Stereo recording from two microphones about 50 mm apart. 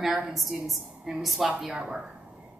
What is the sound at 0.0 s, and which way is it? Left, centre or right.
A woman's voice, centre.